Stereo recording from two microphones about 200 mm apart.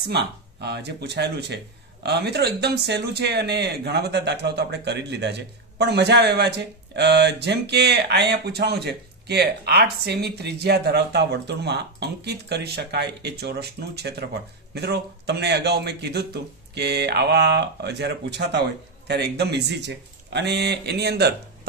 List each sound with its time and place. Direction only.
0.0 s speech: 55° right (ahead or behind)